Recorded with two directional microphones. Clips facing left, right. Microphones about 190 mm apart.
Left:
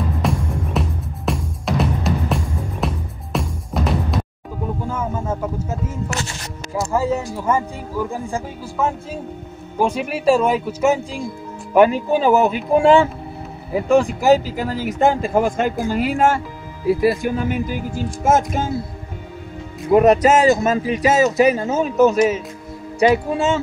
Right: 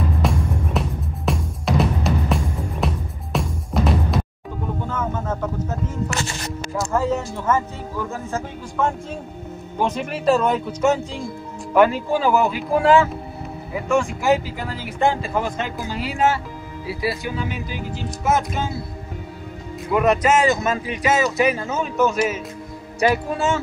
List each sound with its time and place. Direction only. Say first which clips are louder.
0.2 s music: left 1 dB; centre (ahead or behind)
6.8 s speech: left 2 dB; 10° left (ahead or behind); by 18.7 s 45° left (ahead or behind)
19.9 s speech: left 5 dB; 40° left (ahead or behind)
22.9 s speech: left 4 dB; 20° left (ahead or behind)